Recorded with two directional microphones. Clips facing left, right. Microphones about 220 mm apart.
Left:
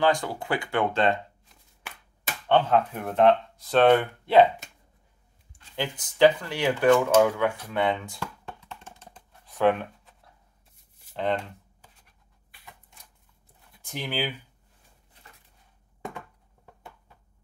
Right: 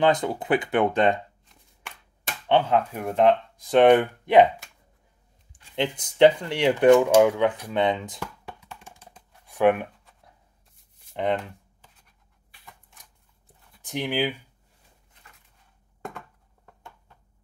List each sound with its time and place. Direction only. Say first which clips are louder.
0.0 s speech: right 3 dB; 20° right (ahead or behind)
1.4 s a sound: even; centre (ahead or behind)
2.4 s speech: even; 10° right (ahead or behind)
5.5 s speech: right 5 dB; 20° right (ahead or behind)
13.8 s speech: right 5 dB; 15° right (ahead or behind)